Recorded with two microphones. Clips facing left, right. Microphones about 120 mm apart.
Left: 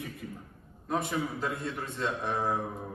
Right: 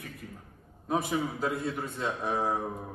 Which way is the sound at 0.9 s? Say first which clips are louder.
Right 2 dB; 5° right (ahead or behind).